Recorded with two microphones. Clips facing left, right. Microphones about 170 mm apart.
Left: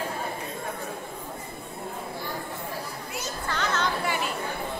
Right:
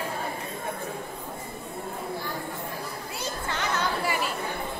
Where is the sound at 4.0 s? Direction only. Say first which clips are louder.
Even; centre (ahead or behind).